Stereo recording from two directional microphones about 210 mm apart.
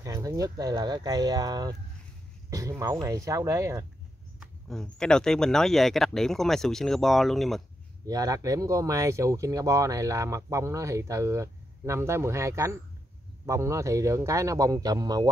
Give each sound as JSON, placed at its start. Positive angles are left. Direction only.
{"t": 0.0, "sound": "speech", "side_deg": -15}
{"t": 4.4, "sound": "speech", "side_deg": 0}
{"t": 8.1, "sound": "speech", "side_deg": -15}